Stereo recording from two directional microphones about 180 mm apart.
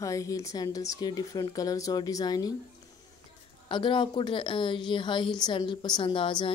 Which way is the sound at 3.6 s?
25° left (ahead or behind).